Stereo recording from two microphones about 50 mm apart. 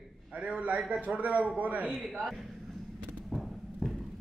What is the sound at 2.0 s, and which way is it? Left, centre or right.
Speech, centre.